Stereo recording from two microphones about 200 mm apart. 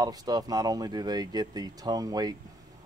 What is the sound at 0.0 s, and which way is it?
Speech, 20° right (ahead or behind).